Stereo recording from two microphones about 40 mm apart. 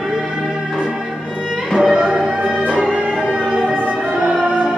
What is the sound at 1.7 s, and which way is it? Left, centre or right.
Music, right.